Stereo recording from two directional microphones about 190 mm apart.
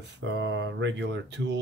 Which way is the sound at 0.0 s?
70° right (ahead or behind).